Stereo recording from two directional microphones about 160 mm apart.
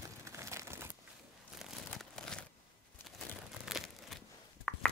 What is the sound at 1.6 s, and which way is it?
Crumpling, 5° left (ahead or behind).